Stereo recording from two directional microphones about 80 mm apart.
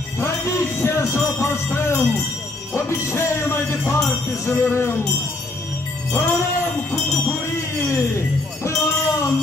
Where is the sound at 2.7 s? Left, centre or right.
Left.